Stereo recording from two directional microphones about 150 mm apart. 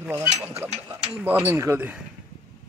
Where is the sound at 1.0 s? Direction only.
10° right (ahead or behind).